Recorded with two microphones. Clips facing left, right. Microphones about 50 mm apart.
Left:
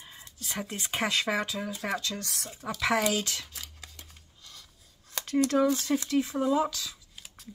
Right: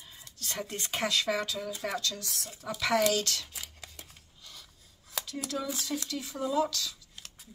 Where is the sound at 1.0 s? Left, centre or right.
Left.